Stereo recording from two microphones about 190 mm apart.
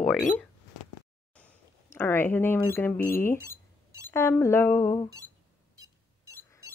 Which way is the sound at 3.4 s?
15° right (ahead or behind).